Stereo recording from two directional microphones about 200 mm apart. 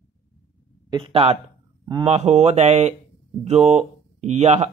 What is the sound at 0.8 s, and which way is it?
Speech, 25° right (ahead or behind).